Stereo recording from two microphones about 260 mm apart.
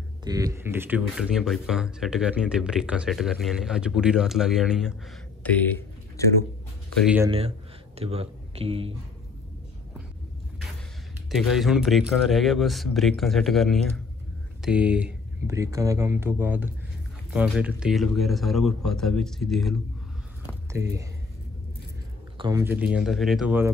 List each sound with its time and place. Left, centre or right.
0.2 s speech: centre
7.0 s speech: centre
7.2 s speech: right
11.2 s speech: centre
20.7 s speech: centre
22.4 s speech: centre